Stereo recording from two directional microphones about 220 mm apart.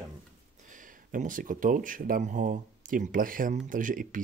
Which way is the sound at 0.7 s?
35° right (ahead or behind).